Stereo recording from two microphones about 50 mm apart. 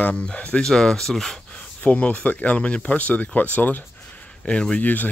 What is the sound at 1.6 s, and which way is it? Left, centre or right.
Speech, left.